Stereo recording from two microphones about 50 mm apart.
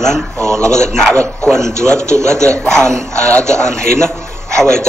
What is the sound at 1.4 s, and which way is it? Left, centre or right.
Speech, centre.